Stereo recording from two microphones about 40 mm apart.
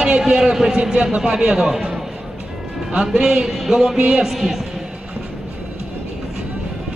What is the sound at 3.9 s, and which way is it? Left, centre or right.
Speech, right.